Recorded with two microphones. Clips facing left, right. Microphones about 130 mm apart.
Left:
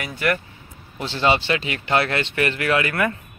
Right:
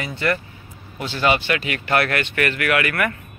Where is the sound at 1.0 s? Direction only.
30° left (ahead or behind).